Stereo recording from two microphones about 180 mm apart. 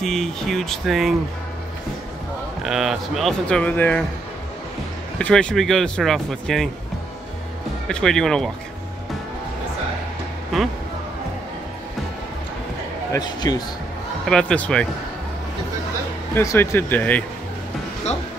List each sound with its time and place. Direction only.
0.0 s speech: centre (ahead or behind)
2.6 s speech: 5° right (ahead or behind)
5.2 s speech: 5° left (ahead or behind)
7.9 s speech: 5° left (ahead or behind)
10.5 s speech: centre (ahead or behind)
13.1 s speech: 20° left (ahead or behind)
14.2 s speech: 5° left (ahead or behind)
16.3 s speech: 15° left (ahead or behind)